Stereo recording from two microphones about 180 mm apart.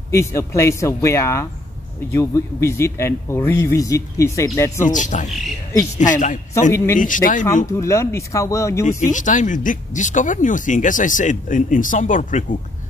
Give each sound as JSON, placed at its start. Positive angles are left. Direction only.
{"t": 0.1, "sound": "speech", "side_deg": 15}
{"t": 4.8, "sound": "speech", "side_deg": 45}
{"t": 7.6, "sound": "speech", "side_deg": 15}
{"t": 9.1, "sound": "speech", "side_deg": 45}